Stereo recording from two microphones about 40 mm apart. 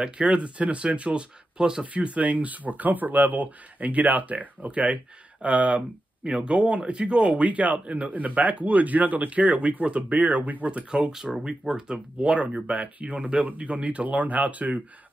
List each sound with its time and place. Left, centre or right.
0.0 s speech: right
1.6 s speech: centre
2.0 s speech: right
10.9 s speech: centre; by 14.8 s right